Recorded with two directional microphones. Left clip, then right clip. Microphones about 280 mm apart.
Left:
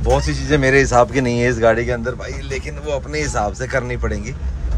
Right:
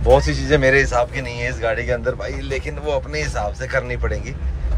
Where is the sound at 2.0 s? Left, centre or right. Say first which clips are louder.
Right 2 dB; centre.